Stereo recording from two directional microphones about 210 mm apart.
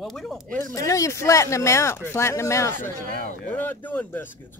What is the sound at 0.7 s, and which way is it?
Speech, 15° left (ahead or behind).